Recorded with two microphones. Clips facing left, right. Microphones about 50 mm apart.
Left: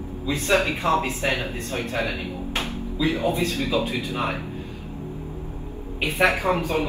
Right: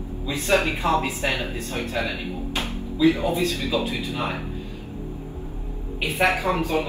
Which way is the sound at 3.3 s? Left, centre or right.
Left.